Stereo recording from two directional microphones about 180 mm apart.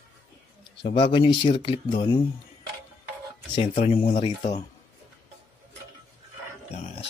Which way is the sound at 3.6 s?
35° left (ahead or behind).